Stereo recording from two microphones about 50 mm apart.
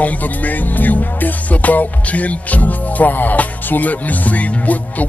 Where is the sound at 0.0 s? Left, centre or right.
Left.